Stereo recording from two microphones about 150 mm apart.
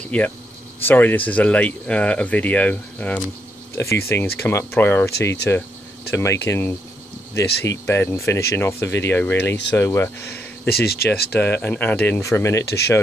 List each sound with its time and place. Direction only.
0.1 s speech: 10° left (ahead or behind)
10.7 s speech: 90° left
11.3 s speech: 15° left (ahead or behind)
12.6 s speech: 90° left